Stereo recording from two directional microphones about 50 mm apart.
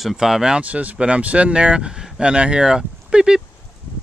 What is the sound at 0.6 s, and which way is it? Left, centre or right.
Speech, right.